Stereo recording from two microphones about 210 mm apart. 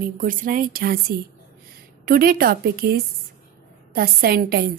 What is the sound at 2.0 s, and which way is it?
A woman's voice, 45° right (ahead or behind).